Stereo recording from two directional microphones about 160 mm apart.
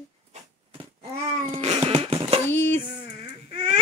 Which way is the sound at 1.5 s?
40° right (ahead or behind).